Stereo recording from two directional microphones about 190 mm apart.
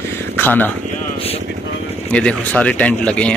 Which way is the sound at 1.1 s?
30° left (ahead or behind).